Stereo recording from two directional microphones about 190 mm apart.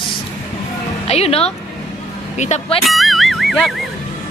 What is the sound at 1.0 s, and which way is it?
Speech, 35° left (ahead or behind).